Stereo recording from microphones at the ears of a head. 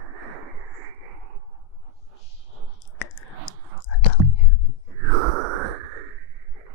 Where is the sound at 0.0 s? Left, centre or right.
Right.